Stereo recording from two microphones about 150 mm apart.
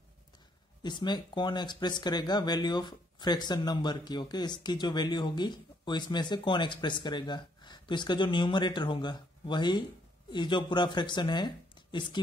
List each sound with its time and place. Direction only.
0.8 s speech: 30° left (ahead or behind)